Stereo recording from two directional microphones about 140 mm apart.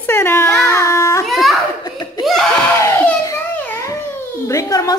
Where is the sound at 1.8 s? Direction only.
30° left (ahead or behind).